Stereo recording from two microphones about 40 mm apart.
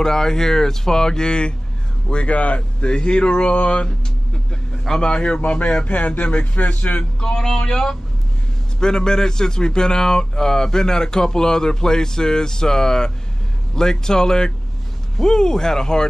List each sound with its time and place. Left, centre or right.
0.0 s speech: centre
5.0 s a man's voice: left
7.2 s speech: centre